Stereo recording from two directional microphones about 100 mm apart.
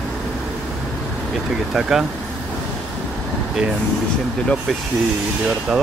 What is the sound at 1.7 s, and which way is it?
Speech, 5° right (ahead or behind).